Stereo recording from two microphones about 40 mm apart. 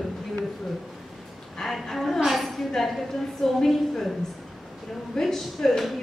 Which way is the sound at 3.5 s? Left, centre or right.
Centre.